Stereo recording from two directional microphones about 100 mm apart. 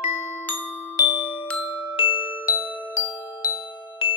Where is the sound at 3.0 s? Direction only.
30° left (ahead or behind).